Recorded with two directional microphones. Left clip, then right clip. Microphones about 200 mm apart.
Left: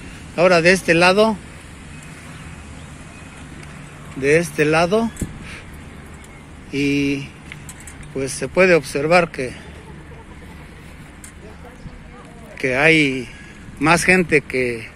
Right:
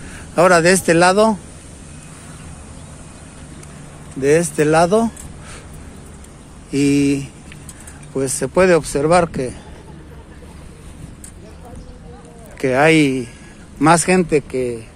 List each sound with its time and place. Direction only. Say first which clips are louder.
0.4 s speech: right 2 dB; 30° right (ahead or behind)
4.2 s speech: right 1 dB; 20° right (ahead or behind)
6.7 s speech: right 4 dB; 25° right (ahead or behind)
12.5 s speech: right 2 dB; 20° right (ahead or behind)